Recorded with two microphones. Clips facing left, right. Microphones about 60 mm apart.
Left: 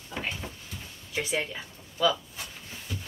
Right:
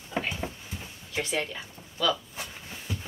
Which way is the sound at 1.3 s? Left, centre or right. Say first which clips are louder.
Even; centre.